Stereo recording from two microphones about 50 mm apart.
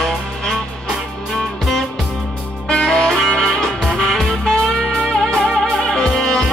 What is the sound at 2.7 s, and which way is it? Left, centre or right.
Music, centre.